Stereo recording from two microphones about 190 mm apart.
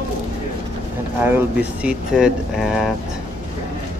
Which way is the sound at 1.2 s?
10° right (ahead or behind).